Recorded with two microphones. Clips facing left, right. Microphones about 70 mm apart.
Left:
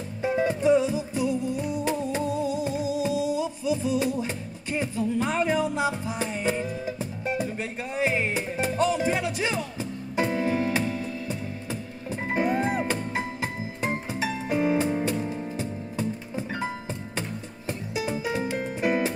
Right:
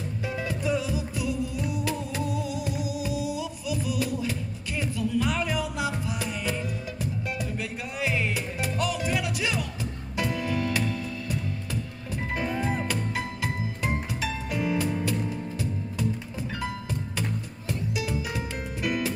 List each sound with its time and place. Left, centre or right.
0.2 s music: left